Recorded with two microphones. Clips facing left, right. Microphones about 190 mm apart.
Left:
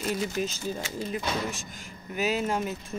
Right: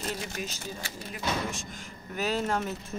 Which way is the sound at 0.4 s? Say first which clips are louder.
Left 7 dB; 30° left (ahead or behind).